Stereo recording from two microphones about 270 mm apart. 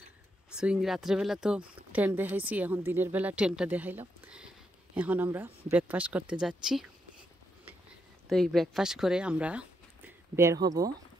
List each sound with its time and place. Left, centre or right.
0.6 s a woman's voice: centre
8.3 s speech: centre